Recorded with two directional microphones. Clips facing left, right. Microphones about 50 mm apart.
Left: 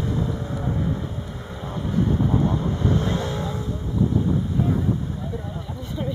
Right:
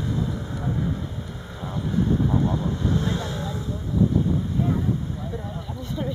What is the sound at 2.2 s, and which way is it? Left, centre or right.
Vehicle, left.